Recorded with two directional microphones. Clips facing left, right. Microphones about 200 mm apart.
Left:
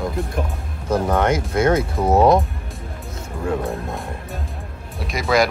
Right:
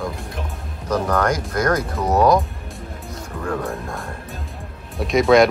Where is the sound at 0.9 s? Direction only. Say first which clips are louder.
Left 1 dB; 25° left (ahead or behind).